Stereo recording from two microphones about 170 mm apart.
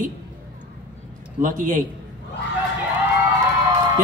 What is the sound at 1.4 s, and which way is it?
Speech, 50° right (ahead or behind).